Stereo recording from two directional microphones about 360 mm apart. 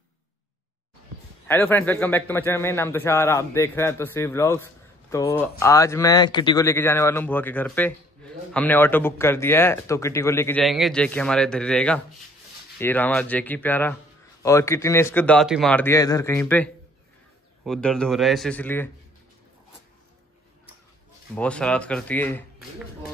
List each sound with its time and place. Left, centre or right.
1.5 s a man's voice: centre
21.4 s speech: centre